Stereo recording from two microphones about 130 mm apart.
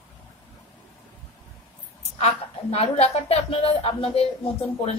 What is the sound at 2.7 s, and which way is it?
Speech, 50° left (ahead or behind).